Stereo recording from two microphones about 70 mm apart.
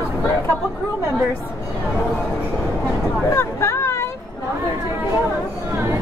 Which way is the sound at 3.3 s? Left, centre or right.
Left.